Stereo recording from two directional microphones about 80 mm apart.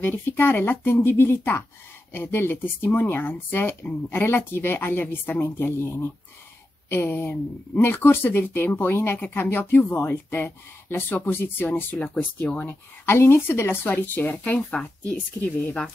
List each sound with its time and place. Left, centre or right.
0.0 s speech: left
12.0 s speech: centre
12.5 s speech: left
14.7 s speech: centre